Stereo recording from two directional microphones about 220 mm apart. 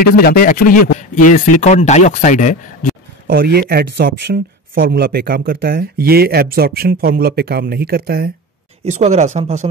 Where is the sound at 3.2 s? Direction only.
45° right (ahead or behind).